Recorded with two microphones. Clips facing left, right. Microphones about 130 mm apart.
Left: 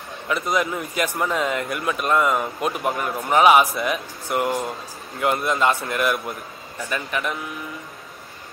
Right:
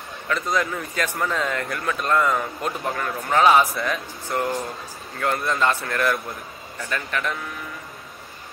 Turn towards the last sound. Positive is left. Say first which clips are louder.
# left 1 dB
turn(degrees=10)  # may be behind; listen again after turning